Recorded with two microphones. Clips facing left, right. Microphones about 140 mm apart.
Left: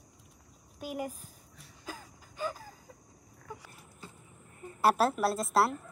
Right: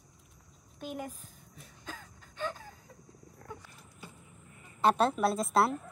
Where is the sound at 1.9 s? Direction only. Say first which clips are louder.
Left 2 dB; 5° left (ahead or behind).